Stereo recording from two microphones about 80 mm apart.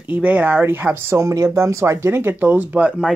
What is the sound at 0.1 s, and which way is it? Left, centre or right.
Speech, centre.